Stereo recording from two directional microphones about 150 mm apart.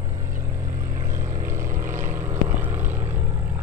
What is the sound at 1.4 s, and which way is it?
Vehicle, 20° right (ahead or behind).